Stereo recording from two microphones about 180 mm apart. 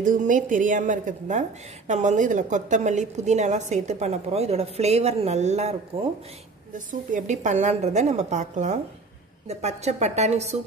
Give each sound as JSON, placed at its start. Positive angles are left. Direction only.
{"t": 0.0, "sound": "a woman's voice", "side_deg": -45}